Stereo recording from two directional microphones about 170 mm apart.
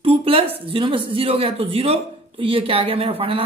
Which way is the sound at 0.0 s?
35° right (ahead or behind).